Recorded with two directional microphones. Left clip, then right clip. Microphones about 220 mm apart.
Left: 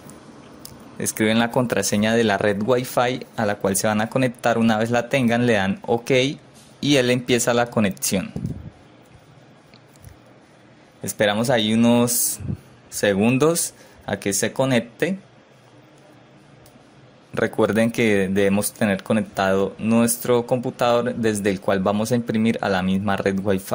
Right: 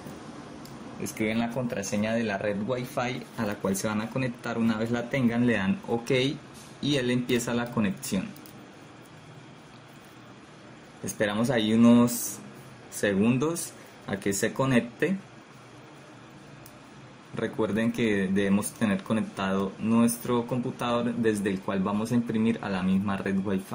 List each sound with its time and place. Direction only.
1.1 s speech: 50° left (ahead or behind)
11.1 s speech: 50° left (ahead or behind)
17.4 s speech: 50° left (ahead or behind)